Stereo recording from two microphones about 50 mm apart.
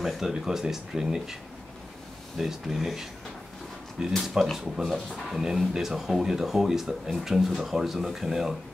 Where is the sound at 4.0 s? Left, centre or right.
Centre.